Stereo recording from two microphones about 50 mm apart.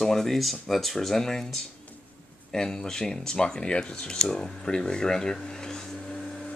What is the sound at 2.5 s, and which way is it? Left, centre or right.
Speech, centre.